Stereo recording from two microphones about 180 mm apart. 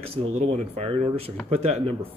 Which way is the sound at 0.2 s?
35° right (ahead or behind).